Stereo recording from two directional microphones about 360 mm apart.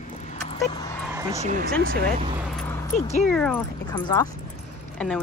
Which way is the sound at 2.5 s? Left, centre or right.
Centre.